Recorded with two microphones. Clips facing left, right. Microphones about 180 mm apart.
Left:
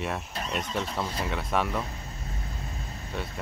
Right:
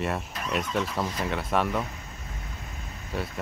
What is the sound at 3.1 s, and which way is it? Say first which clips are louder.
Cricket: right 3 dB; 5° right (ahead or behind).